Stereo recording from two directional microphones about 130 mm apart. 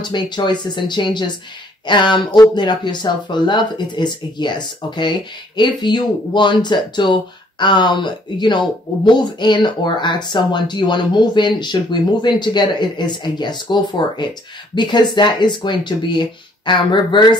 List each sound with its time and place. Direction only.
0.0 s speech: 35° left (ahead or behind)